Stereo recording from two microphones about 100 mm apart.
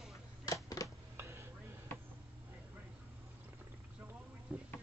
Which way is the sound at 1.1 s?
25° right (ahead or behind).